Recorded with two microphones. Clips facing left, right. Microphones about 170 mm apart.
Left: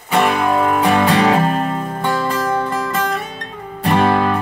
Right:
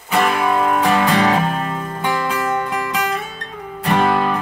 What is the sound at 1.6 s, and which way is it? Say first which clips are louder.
Music: left 4 dB; 35° left (ahead or behind).